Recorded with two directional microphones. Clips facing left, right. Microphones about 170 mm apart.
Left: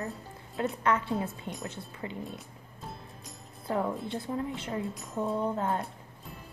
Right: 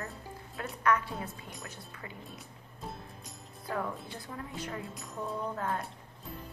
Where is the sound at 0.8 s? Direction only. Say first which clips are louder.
Right 1 dB; 25° left (ahead or behind).